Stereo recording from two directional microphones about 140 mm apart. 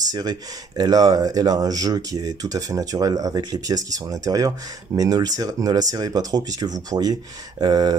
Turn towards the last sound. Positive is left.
turn(degrees=-30)  # may be behind; listen again after turning